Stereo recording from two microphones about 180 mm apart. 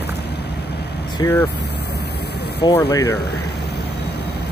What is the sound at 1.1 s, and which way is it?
Speech, 20° left (ahead or behind).